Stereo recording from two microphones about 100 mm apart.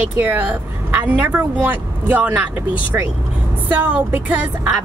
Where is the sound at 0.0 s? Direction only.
15° right (ahead or behind).